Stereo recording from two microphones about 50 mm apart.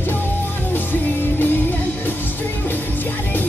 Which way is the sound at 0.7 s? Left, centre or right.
Left.